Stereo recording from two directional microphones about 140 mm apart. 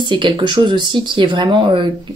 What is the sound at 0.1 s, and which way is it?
Speech, 35° right (ahead or behind).